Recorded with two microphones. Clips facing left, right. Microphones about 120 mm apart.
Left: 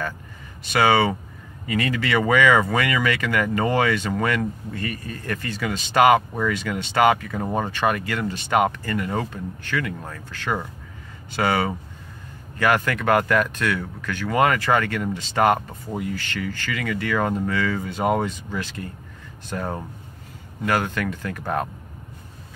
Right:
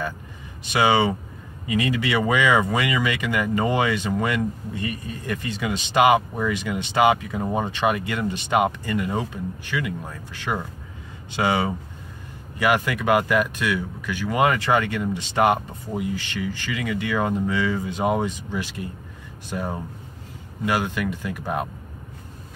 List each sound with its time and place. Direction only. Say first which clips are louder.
0.7 s speech: left 1 dB; 15° right (ahead or behind)